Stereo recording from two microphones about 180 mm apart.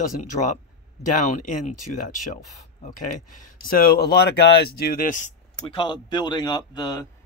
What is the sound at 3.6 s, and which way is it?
Speech, 55° left (ahead or behind).